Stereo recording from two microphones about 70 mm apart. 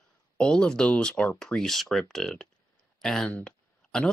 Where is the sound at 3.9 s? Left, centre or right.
Centre.